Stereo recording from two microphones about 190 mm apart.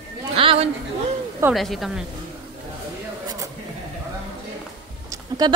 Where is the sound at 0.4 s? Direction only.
30° right (ahead or behind).